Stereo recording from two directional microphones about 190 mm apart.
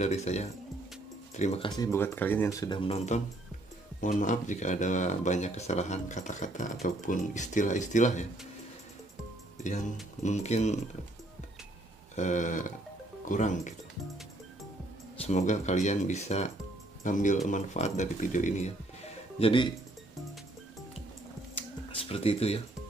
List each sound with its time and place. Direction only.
0.0 s speech: 35° left (ahead or behind)
1.8 s speech: 15° left (ahead or behind); by 3.2 s 30° left (ahead or behind)
4.0 s speech: 40° left (ahead or behind)
9.6 s speech: 40° left (ahead or behind)
12.2 s speech: 40° left (ahead or behind)
15.1 s speech: 35° left (ahead or behind)
19.4 s speech: 25° left (ahead or behind)
21.5 s a sound: 30° left (ahead or behind)